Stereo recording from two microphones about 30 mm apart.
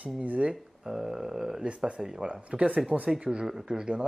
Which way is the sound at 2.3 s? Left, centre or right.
Right.